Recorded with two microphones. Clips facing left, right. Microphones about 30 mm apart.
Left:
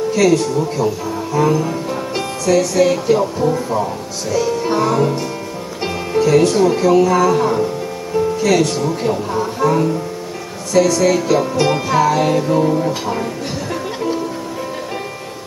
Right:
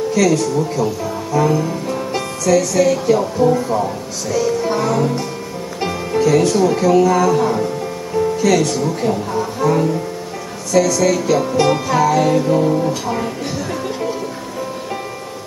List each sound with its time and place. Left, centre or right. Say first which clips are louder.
0.1 s speech: left 2 dB; centre
2.8 s speech: even; left
3.3 s speech: right 2 dB; centre
4.4 s speech: left 1 dB; centre
5.8 s music: left 1 dB; centre
6.4 s speech: left 1 dB; centre
11.0 s speech: left 1 dB; centre